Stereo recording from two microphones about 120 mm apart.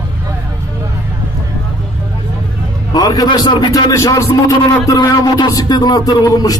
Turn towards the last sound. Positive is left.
turn(degrees=30)  # may be behind; listen again after turning